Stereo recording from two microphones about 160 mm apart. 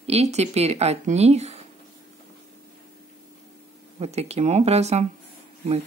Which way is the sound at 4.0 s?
40° right (ahead or behind).